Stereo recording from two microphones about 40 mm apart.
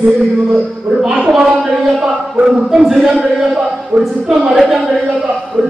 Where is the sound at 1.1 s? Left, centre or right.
Centre.